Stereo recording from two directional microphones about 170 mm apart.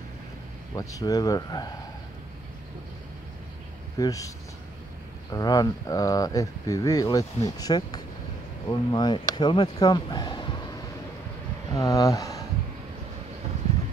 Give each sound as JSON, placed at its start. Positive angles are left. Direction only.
{"t": 0.7, "sound": "speech", "side_deg": 20}
{"t": 4.0, "sound": "speech", "side_deg": 20}
{"t": 5.3, "sound": "speech", "side_deg": 20}
{"t": 11.7, "sound": "speech", "side_deg": 20}